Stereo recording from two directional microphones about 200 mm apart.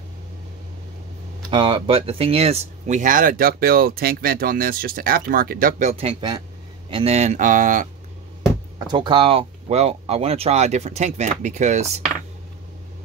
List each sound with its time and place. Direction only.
1.5 s speech: 30° right (ahead or behind)
8.7 s speech: 20° right (ahead or behind)